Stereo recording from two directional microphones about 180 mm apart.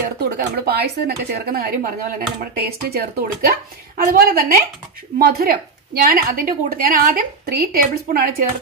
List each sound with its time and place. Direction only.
0.2 s a woman's voice: 60° right (ahead or behind)